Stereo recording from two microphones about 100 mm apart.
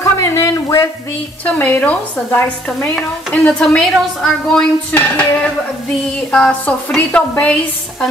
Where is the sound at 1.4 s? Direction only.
15° left (ahead or behind).